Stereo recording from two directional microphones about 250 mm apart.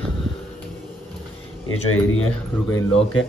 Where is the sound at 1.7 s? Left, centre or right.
Left.